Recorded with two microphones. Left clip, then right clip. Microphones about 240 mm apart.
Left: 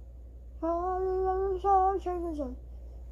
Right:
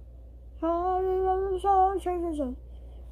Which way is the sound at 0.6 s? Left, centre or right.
Right.